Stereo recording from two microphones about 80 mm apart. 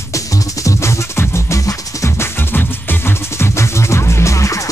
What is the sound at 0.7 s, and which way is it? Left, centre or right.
Music, left.